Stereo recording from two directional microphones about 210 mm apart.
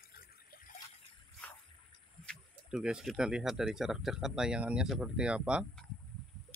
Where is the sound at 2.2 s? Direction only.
5° right (ahead or behind).